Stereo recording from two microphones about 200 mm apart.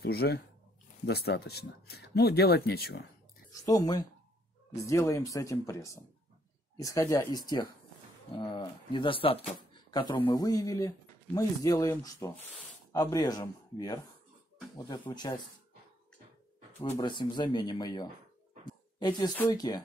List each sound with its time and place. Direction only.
0.0 s speech: 50° left (ahead or behind)
3.6 s speech: 20° left (ahead or behind)
9.6 s a sound: 20° left (ahead or behind)
10.2 s speech: 20° left (ahead or behind)
16.9 s speech: 20° left (ahead or behind)
18.7 s a sound: 20° left (ahead or behind)
19.5 s speech: 20° left (ahead or behind)